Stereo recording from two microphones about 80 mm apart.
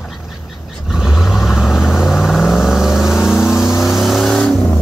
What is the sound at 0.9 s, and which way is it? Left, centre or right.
Vehicle, centre.